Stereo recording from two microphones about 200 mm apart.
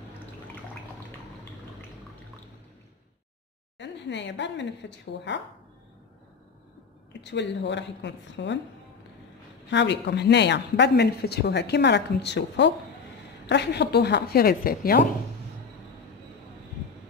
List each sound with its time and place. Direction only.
3.7 s speech: 60° left (ahead or behind)
7.1 s speech: 60° left (ahead or behind)
9.7 s speech: 60° left (ahead or behind)